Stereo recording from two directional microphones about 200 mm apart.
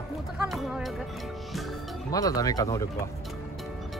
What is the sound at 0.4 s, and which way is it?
Music, centre (ahead or behind).